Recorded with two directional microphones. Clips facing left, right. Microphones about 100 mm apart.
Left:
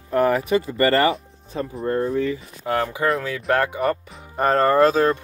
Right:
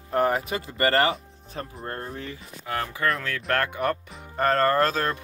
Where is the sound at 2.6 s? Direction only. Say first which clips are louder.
Left 7 dB; 30° left (ahead or behind).